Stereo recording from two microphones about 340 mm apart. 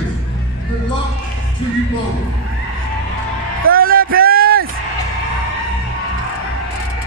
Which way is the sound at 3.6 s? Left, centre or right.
Right.